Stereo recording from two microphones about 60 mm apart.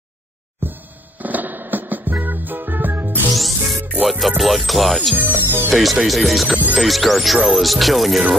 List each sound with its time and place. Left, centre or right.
0.6 s music: right
4.0 s speech: centre
5.1 s speech: right
5.7 s speech: centre
6.5 s music: right
6.8 s speech: centre